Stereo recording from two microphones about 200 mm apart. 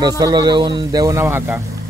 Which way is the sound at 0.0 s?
20° right (ahead or behind).